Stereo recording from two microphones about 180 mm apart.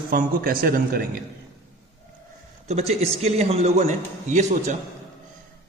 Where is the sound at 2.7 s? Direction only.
35° right (ahead or behind).